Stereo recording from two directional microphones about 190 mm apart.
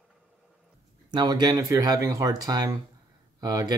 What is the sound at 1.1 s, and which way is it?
Speech, 20° right (ahead or behind).